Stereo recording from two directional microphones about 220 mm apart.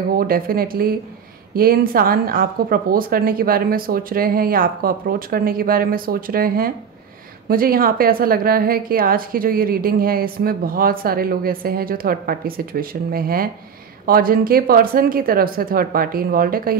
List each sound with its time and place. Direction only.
0.1 s a woman's voice: 40° right (ahead or behind)